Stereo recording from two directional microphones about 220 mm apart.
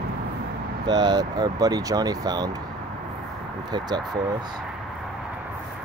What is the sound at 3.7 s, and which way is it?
Speech, 20° right (ahead or behind).